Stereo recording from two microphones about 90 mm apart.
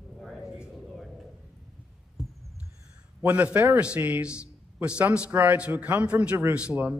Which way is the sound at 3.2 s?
20° right (ahead or behind).